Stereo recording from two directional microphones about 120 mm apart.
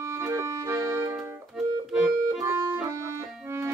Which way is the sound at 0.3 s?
25° right (ahead or behind).